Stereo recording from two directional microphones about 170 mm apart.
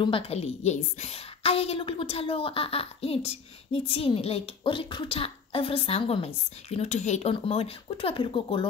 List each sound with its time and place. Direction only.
0.0 s a woman's voice: 35° left (ahead or behind)